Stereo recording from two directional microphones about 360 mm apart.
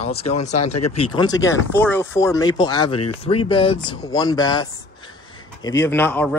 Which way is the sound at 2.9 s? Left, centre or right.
Left.